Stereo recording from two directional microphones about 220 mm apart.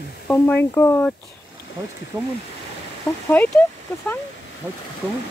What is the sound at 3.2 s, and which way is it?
Speech, 10° left (ahead or behind).